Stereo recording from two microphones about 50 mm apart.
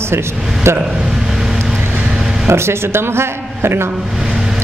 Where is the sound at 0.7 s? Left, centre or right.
Right.